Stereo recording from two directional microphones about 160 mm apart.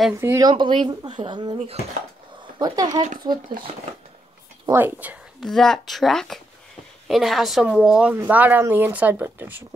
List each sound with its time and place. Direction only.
0.2 s speech: 15° right (ahead or behind)
0.5 s speech: 30° right (ahead or behind)
4.7 s speech: 10° right (ahead or behind)
5.4 s a woman's voice: centre (ahead or behind)